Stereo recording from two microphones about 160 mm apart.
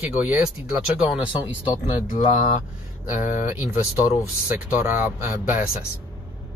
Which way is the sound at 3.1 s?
55° left (ahead or behind).